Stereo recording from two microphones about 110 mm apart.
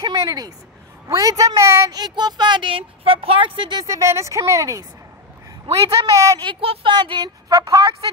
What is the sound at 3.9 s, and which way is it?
Speech, 25° right (ahead or behind).